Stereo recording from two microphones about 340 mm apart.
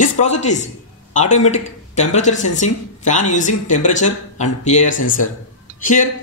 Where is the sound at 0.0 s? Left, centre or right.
Left.